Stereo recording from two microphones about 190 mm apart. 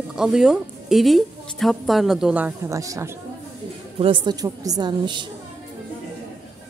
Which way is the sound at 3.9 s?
25° right (ahead or behind).